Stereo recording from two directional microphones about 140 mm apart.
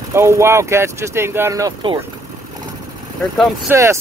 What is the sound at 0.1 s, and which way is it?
Speech, 20° right (ahead or behind).